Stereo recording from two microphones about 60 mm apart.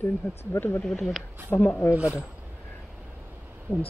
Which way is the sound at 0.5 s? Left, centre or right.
Left.